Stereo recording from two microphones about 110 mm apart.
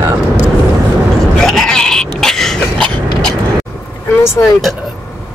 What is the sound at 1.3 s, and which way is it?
Bleat, 5° left (ahead or behind).